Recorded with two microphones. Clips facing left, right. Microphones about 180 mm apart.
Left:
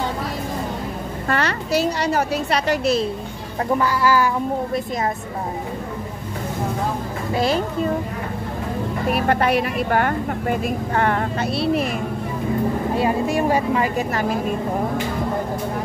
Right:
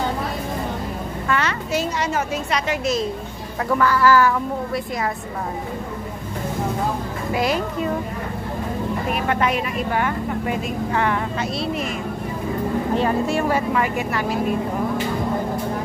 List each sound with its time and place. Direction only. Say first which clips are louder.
1.2 s a woman's voice: left 1 dB; 40° left (ahead or behind)
3.8 s speech: right 4 dB; 15° left (ahead or behind)
7.3 s a child's voice: left 2 dB; 30° left (ahead or behind)
9.1 s a child's voice: left 3 dB; 40° left (ahead or behind)
9.8 s speech: left 2 dB; 50° left (ahead or behind)
12.9 s speech: right 1 dB; 15° left (ahead or behind)
13.7 s a child's voice: left 1 dB; 35° left (ahead or behind)